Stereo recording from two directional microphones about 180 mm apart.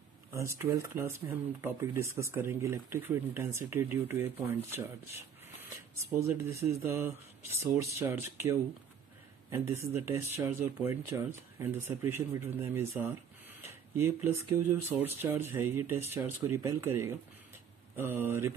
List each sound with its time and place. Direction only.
0.3 s speech: 15° right (ahead or behind)
6.1 s speech: 15° right (ahead or behind)